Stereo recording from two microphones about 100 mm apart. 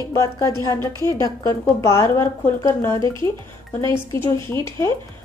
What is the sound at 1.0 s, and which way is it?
A woman's voice, 35° left (ahead or behind).